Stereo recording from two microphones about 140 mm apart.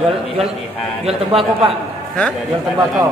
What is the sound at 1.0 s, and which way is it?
Speech, 40° right (ahead or behind).